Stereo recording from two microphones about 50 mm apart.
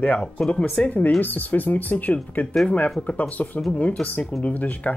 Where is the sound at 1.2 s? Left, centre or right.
Left.